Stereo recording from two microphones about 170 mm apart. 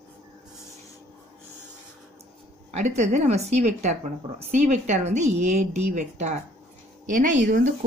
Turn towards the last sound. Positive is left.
turn(degrees=-50)  # may be behind; listen again after turning